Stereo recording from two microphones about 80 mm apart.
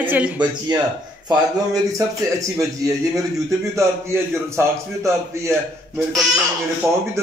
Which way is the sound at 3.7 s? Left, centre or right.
Right.